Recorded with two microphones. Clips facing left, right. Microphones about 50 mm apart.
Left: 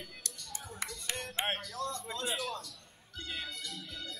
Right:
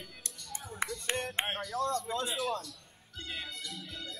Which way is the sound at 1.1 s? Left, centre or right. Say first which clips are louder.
Right 2 dB; right.